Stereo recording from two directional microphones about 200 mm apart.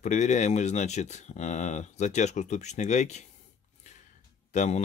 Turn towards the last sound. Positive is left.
turn(degrees=35)  # may be behind; listen again after turning